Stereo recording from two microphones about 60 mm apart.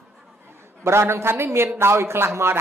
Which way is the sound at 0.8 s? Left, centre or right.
Right.